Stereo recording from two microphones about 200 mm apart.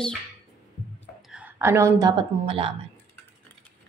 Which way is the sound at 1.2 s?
5° right (ahead or behind).